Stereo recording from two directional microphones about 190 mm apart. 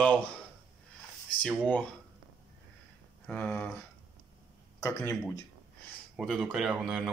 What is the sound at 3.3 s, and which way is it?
Speech, 5° left (ahead or behind).